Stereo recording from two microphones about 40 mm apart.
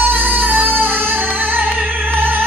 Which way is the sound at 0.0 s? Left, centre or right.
Right.